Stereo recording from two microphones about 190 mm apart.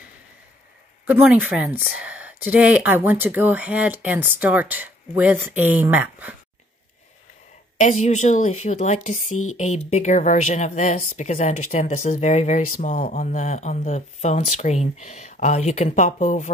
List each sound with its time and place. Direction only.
1.0 s speech: 10° right (ahead or behind)
7.7 s a woman's voice: 40° left (ahead or behind)